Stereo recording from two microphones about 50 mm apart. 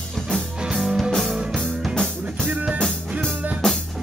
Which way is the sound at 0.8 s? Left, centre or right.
Centre.